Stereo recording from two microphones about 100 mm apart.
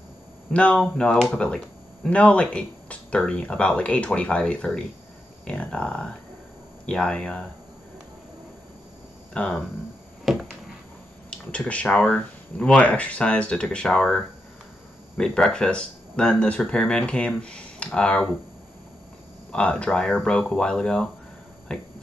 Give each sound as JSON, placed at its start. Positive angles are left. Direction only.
{"t": 0.5, "sound": "speech", "side_deg": 10}
{"t": 9.3, "sound": "speech", "side_deg": 10}
{"t": 11.2, "sound": "speech", "side_deg": 10}
{"t": 19.5, "sound": "speech", "side_deg": 10}